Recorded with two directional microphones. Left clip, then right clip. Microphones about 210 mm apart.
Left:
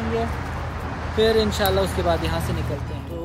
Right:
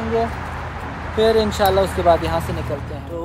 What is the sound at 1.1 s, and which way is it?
Speech, 35° right (ahead or behind).